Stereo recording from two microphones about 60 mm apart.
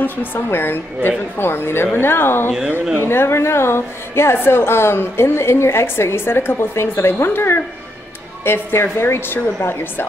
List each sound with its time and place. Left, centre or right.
0.0 s a woman's voice: left